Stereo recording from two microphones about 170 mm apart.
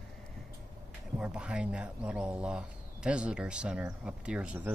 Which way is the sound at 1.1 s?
5° right (ahead or behind).